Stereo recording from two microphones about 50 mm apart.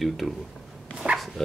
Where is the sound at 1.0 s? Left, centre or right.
Centre.